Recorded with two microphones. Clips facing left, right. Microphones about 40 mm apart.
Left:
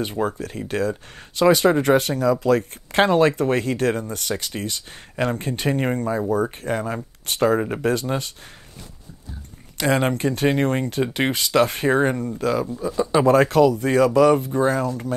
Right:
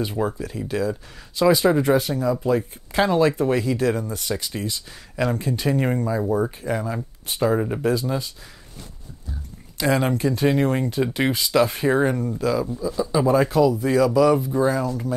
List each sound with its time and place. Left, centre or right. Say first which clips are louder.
0.1 s speech: left 1 dB; left
5.1 s speech: even; left
7.2 s speech: left 2 dB; left
7.5 s speech: left 1 dB; left
7.8 s speech: even; left
9.8 s speech: left 1 dB; left